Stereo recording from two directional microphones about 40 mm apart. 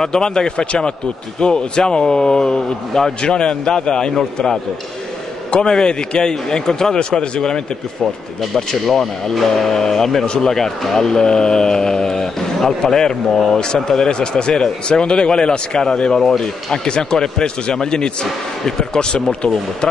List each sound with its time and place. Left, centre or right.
0.0 s speech: centre
5.5 s speech: centre
8.8 s speech: centre